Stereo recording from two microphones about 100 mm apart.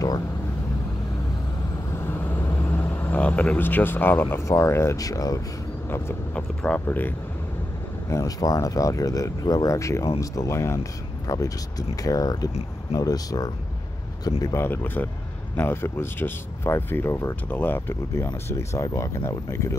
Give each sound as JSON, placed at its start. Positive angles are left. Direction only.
{"t": 2.0, "sound": "speech", "side_deg": 20}
{"t": 5.9, "sound": "a sound", "side_deg": 25}
{"t": 6.3, "sound": "speech", "side_deg": 15}
{"t": 8.1, "sound": "speech", "side_deg": 35}
{"t": 14.6, "sound": "speech", "side_deg": 20}